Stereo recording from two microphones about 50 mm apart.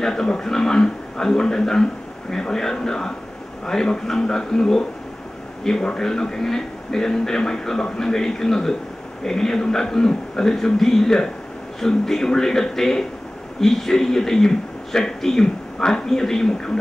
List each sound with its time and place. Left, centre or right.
0.0 s a man's voice: centre